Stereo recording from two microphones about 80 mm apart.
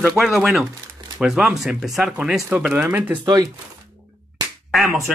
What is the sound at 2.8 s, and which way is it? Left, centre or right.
Speech, centre.